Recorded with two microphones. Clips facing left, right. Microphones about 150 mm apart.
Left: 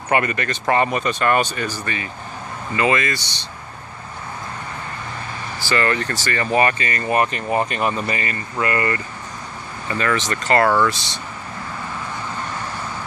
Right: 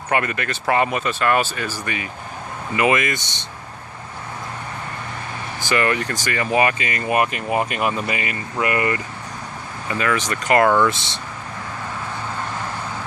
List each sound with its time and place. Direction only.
0.1 s speech: centre (ahead or behind); by 3.3 s 20° right (ahead or behind)
5.6 s speech: 15° right (ahead or behind)